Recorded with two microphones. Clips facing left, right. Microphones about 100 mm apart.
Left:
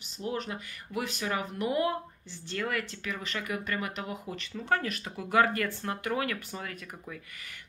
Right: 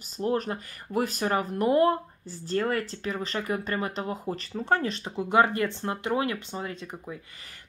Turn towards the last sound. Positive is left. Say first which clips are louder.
# right 5 dB
turn(degrees=-25)  # may be behind; listen again after turning